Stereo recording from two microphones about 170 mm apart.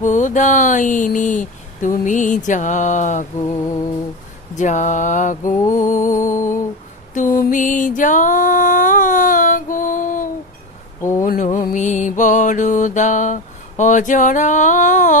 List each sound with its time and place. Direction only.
0.0 s mantra: 45° left (ahead or behind)
4.6 s mantra: 45° left (ahead or behind)
5.7 s music: 50° left (ahead or behind)
11.0 s a sound: 15° left (ahead or behind)
11.2 s mantra: 50° left (ahead or behind)